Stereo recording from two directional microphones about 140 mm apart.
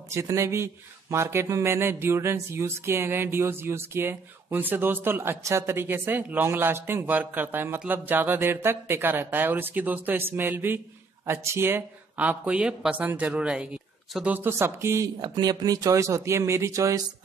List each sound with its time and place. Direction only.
0.1 s speech: 20° right (ahead or behind)
1.1 s a sound: 20° right (ahead or behind)
14.1 s speech: 10° right (ahead or behind)